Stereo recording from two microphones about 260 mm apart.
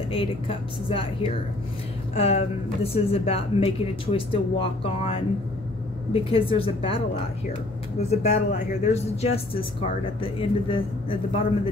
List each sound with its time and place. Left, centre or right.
0.1 s speech: left
2.1 s speech: left
8.1 s speech: left